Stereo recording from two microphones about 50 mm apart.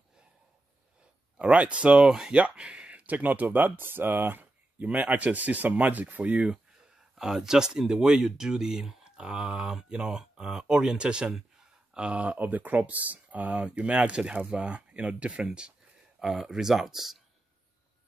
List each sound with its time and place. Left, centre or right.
1.4 s speech: right
4.8 s speech: right
7.2 s speech: centre
16.2 s speech: centre